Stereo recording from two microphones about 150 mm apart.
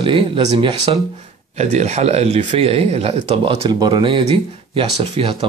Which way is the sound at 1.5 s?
50° right (ahead or behind).